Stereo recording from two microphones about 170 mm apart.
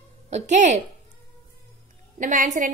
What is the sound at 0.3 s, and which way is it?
Speech, 45° right (ahead or behind).